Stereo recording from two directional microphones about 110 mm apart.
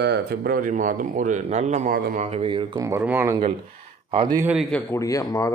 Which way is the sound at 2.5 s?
50° right (ahead or behind).